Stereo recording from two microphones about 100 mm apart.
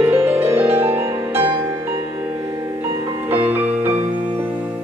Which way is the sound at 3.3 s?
20° right (ahead or behind).